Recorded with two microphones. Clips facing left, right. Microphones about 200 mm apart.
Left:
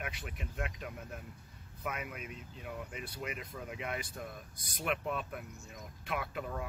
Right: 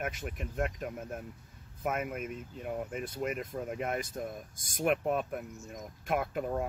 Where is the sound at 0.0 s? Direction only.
45° right (ahead or behind).